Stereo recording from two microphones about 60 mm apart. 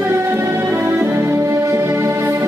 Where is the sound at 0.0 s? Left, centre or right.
Right.